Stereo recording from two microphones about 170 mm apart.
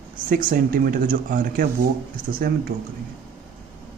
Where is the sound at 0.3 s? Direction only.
55° right (ahead or behind).